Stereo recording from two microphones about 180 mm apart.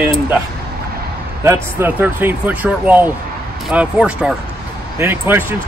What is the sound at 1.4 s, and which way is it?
Speech, 15° right (ahead or behind).